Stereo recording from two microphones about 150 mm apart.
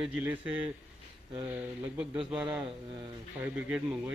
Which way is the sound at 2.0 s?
5° right (ahead or behind).